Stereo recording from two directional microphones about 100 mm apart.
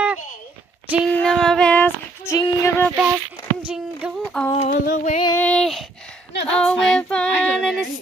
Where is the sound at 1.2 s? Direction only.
5° left (ahead or behind).